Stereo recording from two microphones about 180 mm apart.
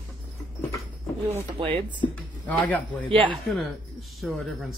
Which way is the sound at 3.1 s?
30° right (ahead or behind).